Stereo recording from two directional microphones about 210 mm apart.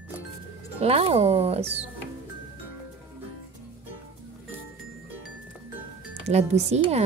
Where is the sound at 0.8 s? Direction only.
30° right (ahead or behind).